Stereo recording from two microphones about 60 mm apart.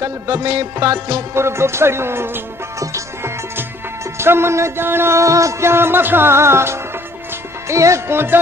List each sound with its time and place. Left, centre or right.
0.0 s music: right
1.3 s music: right
2.8 s music: right
5.2 s music: right